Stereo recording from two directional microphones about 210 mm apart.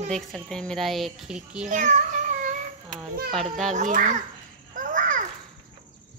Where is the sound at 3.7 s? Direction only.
35° right (ahead or behind).